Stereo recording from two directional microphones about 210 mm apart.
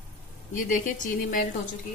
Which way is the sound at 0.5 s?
40° left (ahead or behind).